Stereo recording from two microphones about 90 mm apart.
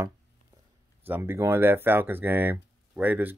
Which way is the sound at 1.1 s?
25° right (ahead or behind).